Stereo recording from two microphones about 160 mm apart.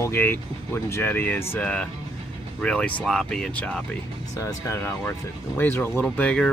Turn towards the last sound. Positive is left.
turn(degrees=5)  # may be behind; listen again after turning